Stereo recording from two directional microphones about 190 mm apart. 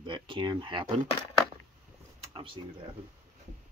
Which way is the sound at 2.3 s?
25° right (ahead or behind).